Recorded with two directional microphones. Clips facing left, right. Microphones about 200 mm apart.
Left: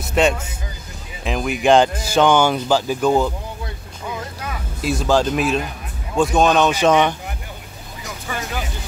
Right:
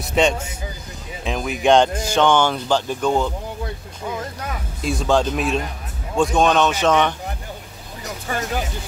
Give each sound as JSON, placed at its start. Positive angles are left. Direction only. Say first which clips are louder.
{"t": 0.0, "sound": "vehicle", "louder": "left 1 dB", "side_deg": 0}
{"t": 1.2, "sound": "speech", "louder": "left 1 dB", "side_deg": 0}
{"t": 4.8, "sound": "speech", "louder": "left 1 dB", "side_deg": 0}
{"t": 8.0, "sound": "a sound", "louder": "right 2 dB", "side_deg": -40}